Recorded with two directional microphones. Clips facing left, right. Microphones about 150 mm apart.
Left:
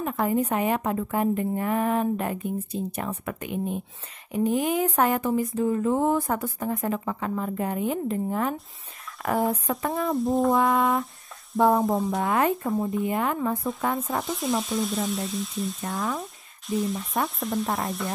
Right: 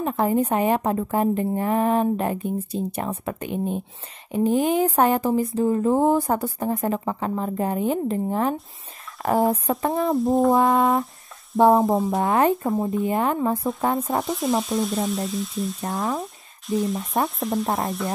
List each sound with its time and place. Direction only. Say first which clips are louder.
0.0 s speech: right 3 dB; 30° right (ahead or behind)
10.1 s frying: right 3 dB; centre (ahead or behind)
10.5 s speech: right 3 dB; 25° right (ahead or behind)
11.9 s frying: right 4 dB; centre (ahead or behind)
12.2 s speech: right 4 dB; 25° right (ahead or behind)
14.2 s frying: right 4 dB; centre (ahead or behind)
16.2 s speech: right 4 dB; centre (ahead or behind)
17.4 s frying: right 3 dB; centre (ahead or behind)